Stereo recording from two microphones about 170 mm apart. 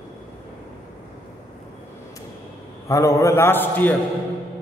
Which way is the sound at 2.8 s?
20° left (ahead or behind).